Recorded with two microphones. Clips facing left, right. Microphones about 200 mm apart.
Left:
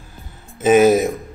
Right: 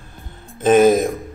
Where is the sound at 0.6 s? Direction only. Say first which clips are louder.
Even; 5° left (ahead or behind).